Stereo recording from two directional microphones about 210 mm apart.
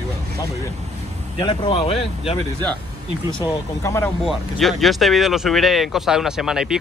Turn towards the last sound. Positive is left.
turn(degrees=-5)  # may be behind; listen again after turning